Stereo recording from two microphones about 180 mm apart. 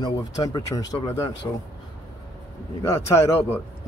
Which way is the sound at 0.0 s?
20° left (ahead or behind).